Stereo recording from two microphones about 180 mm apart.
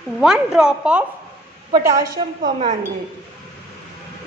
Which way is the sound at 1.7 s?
20° right (ahead or behind).